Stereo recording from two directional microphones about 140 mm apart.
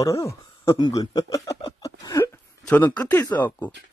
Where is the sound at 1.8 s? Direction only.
25° left (ahead or behind).